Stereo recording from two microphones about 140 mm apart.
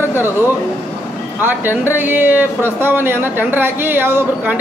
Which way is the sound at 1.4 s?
15° right (ahead or behind).